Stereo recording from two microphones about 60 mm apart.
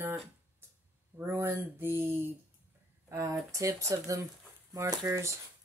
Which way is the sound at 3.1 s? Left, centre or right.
Right.